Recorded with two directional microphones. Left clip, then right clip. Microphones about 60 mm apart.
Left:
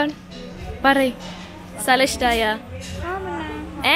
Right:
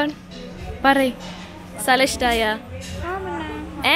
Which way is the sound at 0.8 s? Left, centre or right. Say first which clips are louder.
Even; right.